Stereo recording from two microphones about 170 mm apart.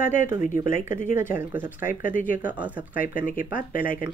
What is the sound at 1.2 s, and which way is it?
Speech, 15° right (ahead or behind).